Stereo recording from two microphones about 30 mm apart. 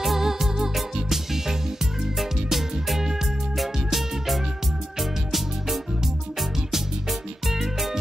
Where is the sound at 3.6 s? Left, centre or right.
Centre.